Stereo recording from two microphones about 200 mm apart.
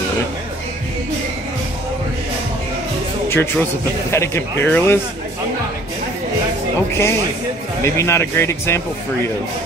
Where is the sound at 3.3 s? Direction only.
10° left (ahead or behind).